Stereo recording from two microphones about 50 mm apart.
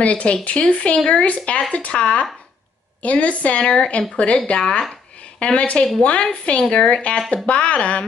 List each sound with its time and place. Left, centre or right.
0.0 s speech: left
6.6 s speech: centre